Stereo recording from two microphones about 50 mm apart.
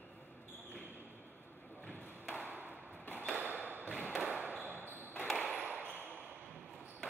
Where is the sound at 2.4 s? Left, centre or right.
Right.